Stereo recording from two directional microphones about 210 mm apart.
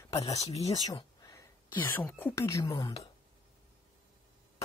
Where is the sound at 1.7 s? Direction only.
10° left (ahead or behind).